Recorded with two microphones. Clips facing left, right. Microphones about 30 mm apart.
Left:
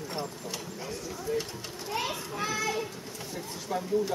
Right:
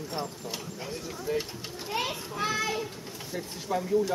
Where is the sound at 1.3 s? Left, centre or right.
Right.